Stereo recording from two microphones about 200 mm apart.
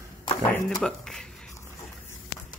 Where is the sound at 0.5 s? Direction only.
10° left (ahead or behind).